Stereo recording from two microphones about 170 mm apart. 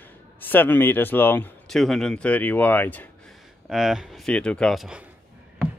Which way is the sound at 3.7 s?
5° right (ahead or behind).